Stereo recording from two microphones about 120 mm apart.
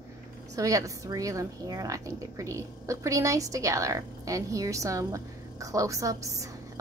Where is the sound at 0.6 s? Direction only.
30° right (ahead or behind).